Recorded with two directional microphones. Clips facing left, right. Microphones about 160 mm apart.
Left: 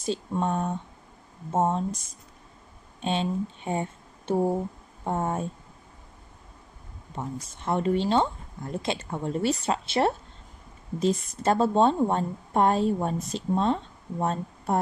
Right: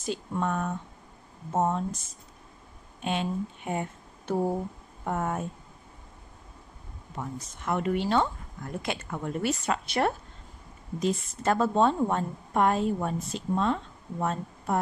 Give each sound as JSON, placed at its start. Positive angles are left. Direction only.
{"t": 0.0, "sound": "speech", "side_deg": 25}
{"t": 3.0, "sound": "speech", "side_deg": 25}
{"t": 7.2, "sound": "a woman's voice", "side_deg": 30}